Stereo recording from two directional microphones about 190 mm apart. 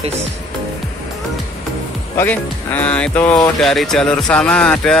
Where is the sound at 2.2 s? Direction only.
10° left (ahead or behind).